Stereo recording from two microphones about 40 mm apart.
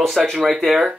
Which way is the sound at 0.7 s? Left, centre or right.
Right.